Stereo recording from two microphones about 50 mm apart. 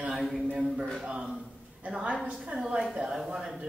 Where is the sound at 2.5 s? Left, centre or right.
Centre.